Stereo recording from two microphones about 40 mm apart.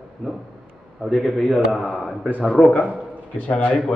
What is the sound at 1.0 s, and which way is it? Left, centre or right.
A man's voice, centre.